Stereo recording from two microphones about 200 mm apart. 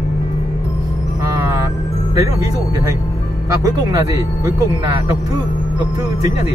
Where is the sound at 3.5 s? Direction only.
15° right (ahead or behind).